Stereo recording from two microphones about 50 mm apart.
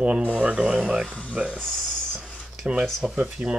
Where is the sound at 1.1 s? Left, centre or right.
Left.